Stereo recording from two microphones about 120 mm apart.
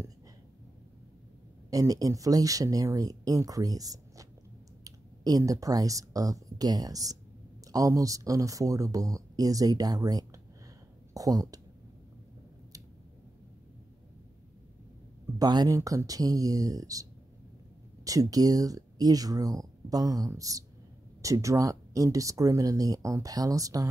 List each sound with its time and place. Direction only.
1.7 s speech: 30° right (ahead or behind)
15.3 s speech: 35° right (ahead or behind)